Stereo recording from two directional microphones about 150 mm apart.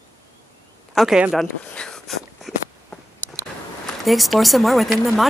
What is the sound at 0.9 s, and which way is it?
Speech, 5° right (ahead or behind).